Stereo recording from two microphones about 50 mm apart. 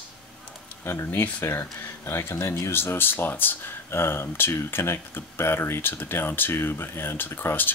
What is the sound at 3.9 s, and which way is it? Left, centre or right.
Speech, left.